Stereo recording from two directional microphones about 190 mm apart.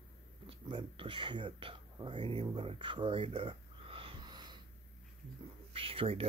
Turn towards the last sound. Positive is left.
turn(degrees=-30)  # may be behind; listen again after turning